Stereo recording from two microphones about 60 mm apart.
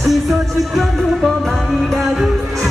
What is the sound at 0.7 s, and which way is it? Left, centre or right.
Music, centre.